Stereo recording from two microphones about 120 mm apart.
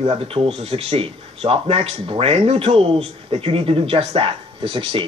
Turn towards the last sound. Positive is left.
turn(degrees=-50)  # may be behind; listen again after turning